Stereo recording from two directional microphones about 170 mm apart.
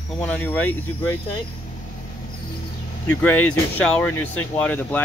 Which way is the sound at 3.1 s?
10° left (ahead or behind).